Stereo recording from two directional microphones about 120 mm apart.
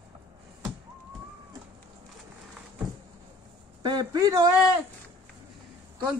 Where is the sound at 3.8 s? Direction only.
35° right (ahead or behind).